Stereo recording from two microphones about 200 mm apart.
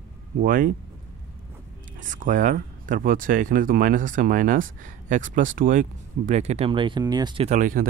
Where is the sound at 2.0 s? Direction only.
40° right (ahead or behind); by 7.4 s 20° right (ahead or behind).